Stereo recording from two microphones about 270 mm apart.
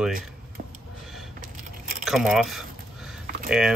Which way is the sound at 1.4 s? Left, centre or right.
Right.